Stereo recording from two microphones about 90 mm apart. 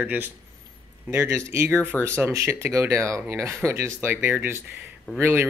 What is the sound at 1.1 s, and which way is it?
Speech, 30° right (ahead or behind).